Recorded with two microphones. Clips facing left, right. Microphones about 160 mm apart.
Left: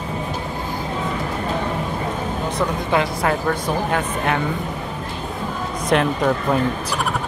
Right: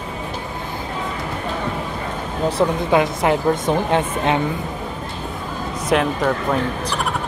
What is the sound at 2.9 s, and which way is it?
A woman's voice, 20° right (ahead or behind).